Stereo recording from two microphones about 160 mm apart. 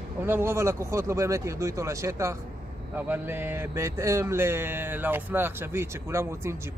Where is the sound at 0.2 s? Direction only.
15° right (ahead or behind).